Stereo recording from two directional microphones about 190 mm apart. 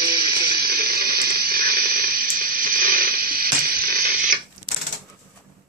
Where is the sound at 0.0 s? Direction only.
55° right (ahead or behind).